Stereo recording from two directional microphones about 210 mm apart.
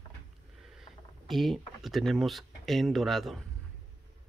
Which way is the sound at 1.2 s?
Centre (ahead or behind).